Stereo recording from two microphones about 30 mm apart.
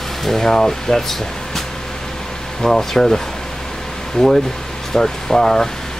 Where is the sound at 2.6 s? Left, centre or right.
Centre.